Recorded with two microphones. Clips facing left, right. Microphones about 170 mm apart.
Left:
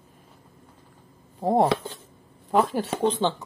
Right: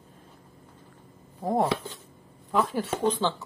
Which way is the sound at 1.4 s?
30° left (ahead or behind).